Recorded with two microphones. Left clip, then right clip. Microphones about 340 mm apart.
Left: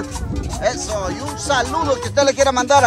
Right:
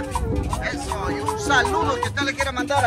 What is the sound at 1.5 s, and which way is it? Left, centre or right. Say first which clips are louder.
Music: left 2 dB; centre.